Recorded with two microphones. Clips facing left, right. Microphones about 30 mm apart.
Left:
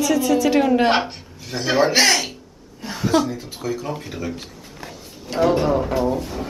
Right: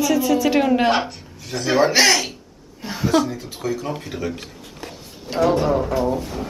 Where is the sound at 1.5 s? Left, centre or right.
Centre.